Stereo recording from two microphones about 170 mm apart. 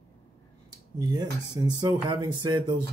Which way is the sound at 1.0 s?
25° right (ahead or behind).